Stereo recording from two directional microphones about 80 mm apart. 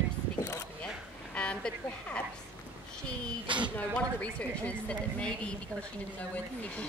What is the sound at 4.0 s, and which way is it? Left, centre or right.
A woman's voice, centre.